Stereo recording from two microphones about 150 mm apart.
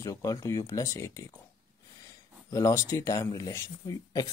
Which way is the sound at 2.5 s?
20° left (ahead or behind).